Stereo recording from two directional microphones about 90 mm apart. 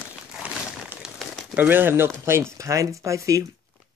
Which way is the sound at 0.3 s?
10° right (ahead or behind).